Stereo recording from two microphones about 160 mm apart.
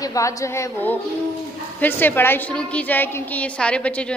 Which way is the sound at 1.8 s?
10° left (ahead or behind).